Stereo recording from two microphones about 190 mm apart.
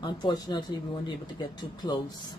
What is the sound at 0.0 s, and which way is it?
Speech, 20° left (ahead or behind).